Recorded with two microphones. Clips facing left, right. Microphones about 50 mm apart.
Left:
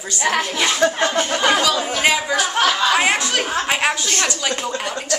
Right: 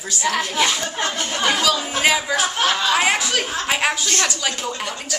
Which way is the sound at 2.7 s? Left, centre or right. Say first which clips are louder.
Left 2 dB; centre.